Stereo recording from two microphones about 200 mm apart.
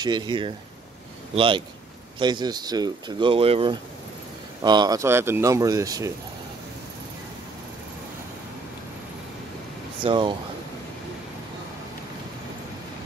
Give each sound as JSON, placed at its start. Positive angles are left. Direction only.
{"t": 0.0, "sound": "speech", "side_deg": -20}
{"t": 10.0, "sound": "speech", "side_deg": -25}